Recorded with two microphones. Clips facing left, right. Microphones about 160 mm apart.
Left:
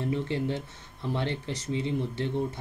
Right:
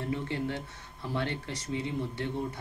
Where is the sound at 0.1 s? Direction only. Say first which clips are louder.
Left 1 dB; 20° left (ahead or behind).